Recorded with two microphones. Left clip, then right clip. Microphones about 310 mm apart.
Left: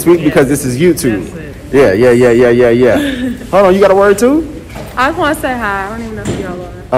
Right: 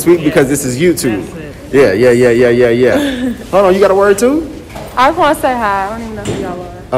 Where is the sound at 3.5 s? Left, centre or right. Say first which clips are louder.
Left 1 dB; centre.